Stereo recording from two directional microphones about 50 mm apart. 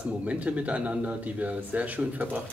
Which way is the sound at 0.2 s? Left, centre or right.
Right.